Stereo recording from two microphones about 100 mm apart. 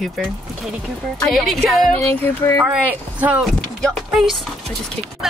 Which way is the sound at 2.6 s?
15° right (ahead or behind).